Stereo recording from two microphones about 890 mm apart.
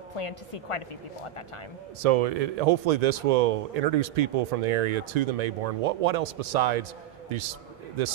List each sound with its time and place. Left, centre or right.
0.2 s a woman's voice: left
2.0 s speech: right